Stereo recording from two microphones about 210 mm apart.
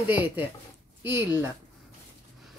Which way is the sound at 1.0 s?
10° right (ahead or behind).